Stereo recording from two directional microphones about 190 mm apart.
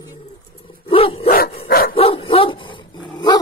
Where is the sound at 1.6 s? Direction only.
50° left (ahead or behind).